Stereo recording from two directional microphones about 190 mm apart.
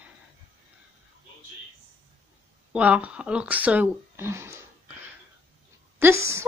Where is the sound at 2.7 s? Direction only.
5° right (ahead or behind).